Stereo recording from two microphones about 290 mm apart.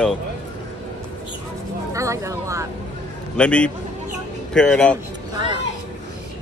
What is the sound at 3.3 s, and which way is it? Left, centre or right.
Speech, centre.